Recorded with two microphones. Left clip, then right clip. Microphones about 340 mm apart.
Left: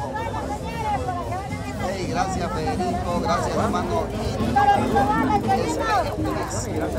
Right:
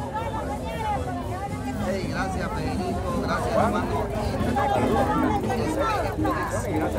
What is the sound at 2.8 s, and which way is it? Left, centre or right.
Speech, centre.